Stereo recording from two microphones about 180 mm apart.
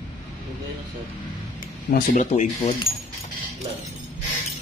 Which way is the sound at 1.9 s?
55° left (ahead or behind).